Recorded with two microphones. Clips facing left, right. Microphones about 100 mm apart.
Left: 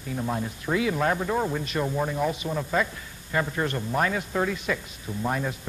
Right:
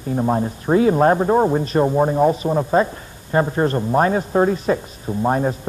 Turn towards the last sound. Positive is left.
turn(degrees=-40)  # may be behind; listen again after turning